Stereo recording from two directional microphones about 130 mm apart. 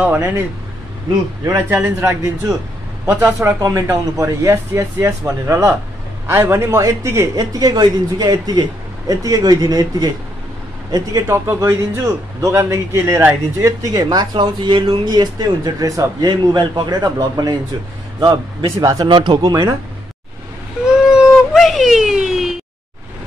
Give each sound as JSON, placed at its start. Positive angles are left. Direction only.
{"t": 0.0, "sound": "speech", "side_deg": -15}
{"t": 1.7, "sound": "a man's voice", "side_deg": -20}
{"t": 21.1, "sound": "a sound", "side_deg": -5}